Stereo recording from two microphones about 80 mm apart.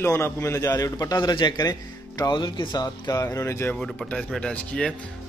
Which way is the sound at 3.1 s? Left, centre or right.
Left.